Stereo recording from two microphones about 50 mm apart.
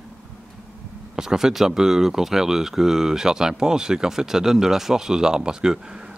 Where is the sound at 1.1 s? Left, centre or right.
Centre.